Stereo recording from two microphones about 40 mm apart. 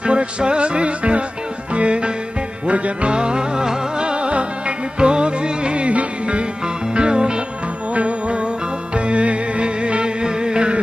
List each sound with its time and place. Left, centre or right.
0.0 s music: right